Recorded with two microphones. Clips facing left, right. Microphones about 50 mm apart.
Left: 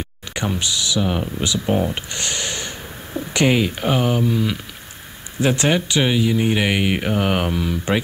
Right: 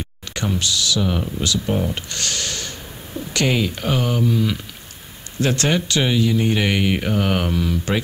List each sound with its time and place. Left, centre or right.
0.3 s speech: centre